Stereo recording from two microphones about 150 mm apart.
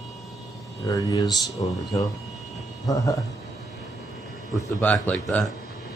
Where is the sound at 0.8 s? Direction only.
25° left (ahead or behind).